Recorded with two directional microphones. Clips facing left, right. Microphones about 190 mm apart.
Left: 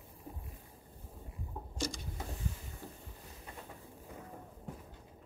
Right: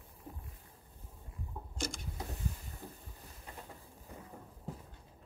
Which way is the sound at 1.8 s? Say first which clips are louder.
Left 2 dB; 50° right (ahead or behind).